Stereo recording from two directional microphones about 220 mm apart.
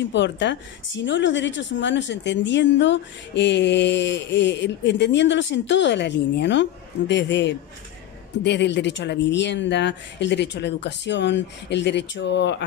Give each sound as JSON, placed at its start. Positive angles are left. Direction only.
{"t": 0.0, "sound": "a woman's voice", "side_deg": 55}